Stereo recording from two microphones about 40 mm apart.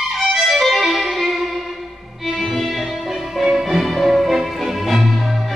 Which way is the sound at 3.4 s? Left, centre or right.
Centre.